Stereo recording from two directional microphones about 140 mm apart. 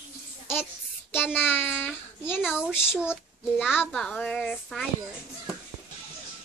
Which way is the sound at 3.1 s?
5° right (ahead or behind).